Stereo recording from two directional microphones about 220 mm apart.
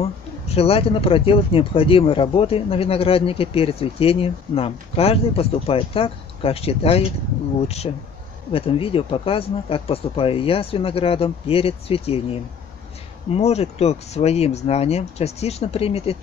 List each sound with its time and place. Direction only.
0.0 s speech: 25° left (ahead or behind)